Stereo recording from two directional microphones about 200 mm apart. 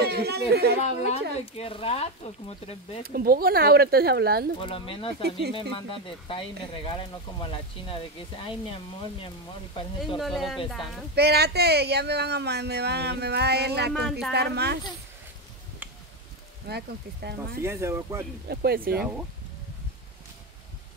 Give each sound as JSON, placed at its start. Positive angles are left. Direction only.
{"t": 0.0, "sound": "speech", "side_deg": -50}
{"t": 0.8, "sound": "a woman's voice", "side_deg": 35}
{"t": 3.1, "sound": "speech", "side_deg": -50}
{"t": 4.6, "sound": "speech", "side_deg": 25}
{"t": 10.1, "sound": "speech", "side_deg": 0}
{"t": 11.1, "sound": "speech", "side_deg": -55}
{"t": 16.6, "sound": "speech", "side_deg": -55}
{"t": 17.6, "sound": "speech", "side_deg": -15}
{"t": 18.5, "sound": "speech", "side_deg": -50}